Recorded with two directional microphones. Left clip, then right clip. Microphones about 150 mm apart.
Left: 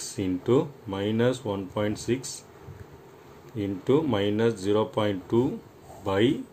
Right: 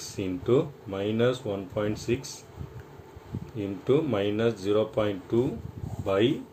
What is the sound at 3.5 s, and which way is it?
Speech, 45° left (ahead or behind).